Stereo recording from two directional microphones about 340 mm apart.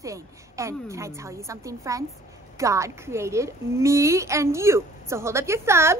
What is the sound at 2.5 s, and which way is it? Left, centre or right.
A woman's voice, centre.